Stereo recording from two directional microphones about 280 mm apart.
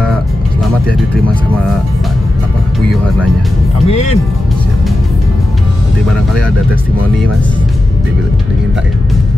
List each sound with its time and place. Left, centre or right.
3.8 s speech: left